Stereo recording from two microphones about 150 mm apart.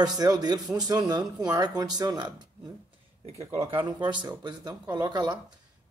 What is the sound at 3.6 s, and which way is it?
Speech, 35° right (ahead or behind).